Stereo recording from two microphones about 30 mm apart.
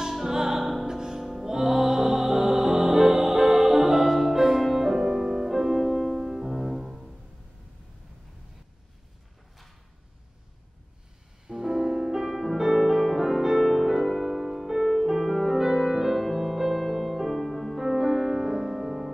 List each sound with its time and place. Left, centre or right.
0.1 s music: centre
0.5 s music: centre
0.8 s music: centre
11.4 s music: centre
12.3 s music: centre
16.3 s music: centre
16.5 s music: centre